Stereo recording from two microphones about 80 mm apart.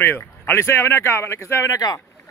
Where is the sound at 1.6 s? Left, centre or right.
Left.